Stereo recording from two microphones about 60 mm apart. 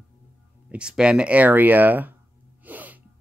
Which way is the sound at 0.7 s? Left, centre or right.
Centre.